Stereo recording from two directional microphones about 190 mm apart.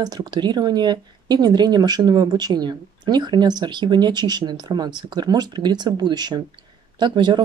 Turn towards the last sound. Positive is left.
turn(degrees=-25)  # may be behind; listen again after turning